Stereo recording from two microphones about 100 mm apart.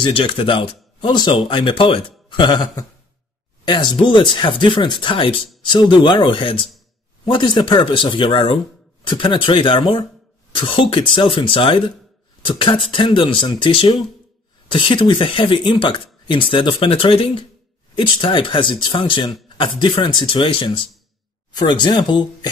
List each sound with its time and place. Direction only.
0.0 s speech: 60° left (ahead or behind)
21.5 s speech: 45° left (ahead or behind)